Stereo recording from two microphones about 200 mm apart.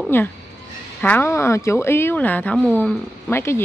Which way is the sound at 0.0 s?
10° left (ahead or behind).